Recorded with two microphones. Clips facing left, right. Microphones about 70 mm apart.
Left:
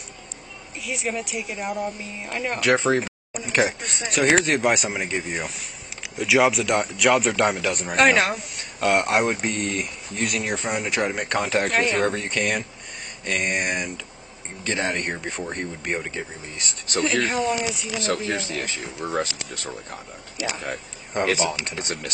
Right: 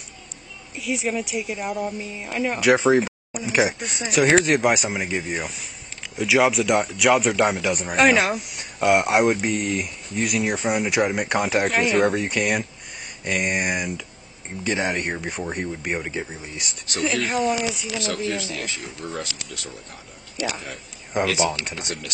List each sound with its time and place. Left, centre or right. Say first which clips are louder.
0.7 s a man's voice: right 3 dB; centre
17.9 s speech: left 3 dB; left
21.1 s a man's voice: right 1 dB; centre
21.7 s speech: left 2 dB; left